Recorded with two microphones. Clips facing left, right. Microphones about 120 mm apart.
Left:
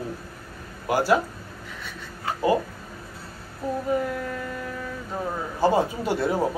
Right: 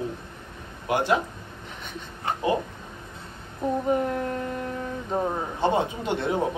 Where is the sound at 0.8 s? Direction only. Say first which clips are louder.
Left 2 dB; 5° left (ahead or behind).